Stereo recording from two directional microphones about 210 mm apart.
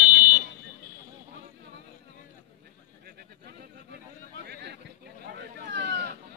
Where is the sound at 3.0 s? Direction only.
50° right (ahead or behind).